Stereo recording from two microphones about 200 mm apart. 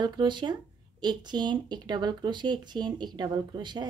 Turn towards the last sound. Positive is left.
turn(degrees=-20)  # may be behind; listen again after turning